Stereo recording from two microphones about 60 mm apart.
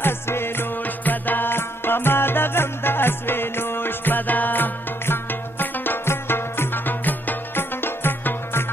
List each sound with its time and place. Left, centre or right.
0.0 s music: left